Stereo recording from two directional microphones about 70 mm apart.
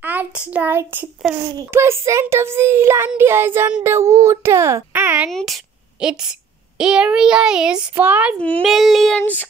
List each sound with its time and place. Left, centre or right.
0.0 s a sound: right
1.2 s child singing: centre
1.7 s a child's voice: right
4.9 s speech: right
5.3 s child singing: centre
5.9 s a woman's voice: centre
7.9 s speech: right
8.4 s a sound: centre
8.6 s child singing: centre
9.2 s a sound: left